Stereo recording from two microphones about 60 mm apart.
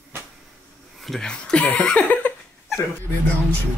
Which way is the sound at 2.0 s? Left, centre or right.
Left.